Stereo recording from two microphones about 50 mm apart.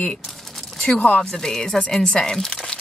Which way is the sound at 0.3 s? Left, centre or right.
Centre.